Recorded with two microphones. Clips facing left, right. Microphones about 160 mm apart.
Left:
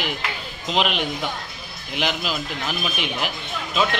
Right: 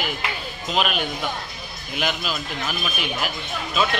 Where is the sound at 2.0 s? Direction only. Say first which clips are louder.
Left 1 dB; 15° left (ahead or behind).